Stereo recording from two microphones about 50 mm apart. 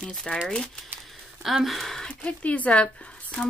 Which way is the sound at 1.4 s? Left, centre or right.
Centre.